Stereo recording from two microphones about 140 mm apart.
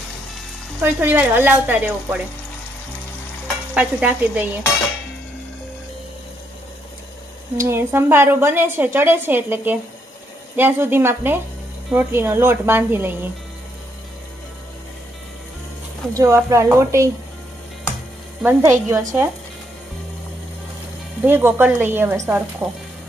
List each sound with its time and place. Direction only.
0.7 s a woman's voice: 15° right (ahead or behind)
3.7 s a woman's voice: 10° right (ahead or behind)
7.5 s a woman's voice: 20° right (ahead or behind)
16.1 s speech: 25° right (ahead or behind)
18.4 s a woman's voice: 15° right (ahead or behind)
21.2 s a woman's voice: 15° right (ahead or behind)